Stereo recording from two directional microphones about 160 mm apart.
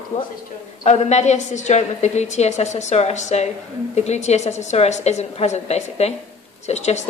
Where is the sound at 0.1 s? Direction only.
45° left (ahead or behind).